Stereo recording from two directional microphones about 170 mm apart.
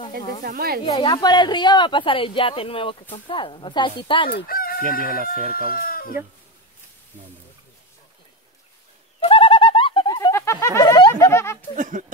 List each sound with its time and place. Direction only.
0.4 s speech: 60° right (ahead or behind)
0.9 s speech: 30° left (ahead or behind)
4.3 s chicken: 60° left (ahead or behind)
4.9 s speech: 60° left (ahead or behind)
9.2 s bird: 30° left (ahead or behind)
11.2 s speech: 15° left (ahead or behind)
11.7 s speech: 50° right (ahead or behind)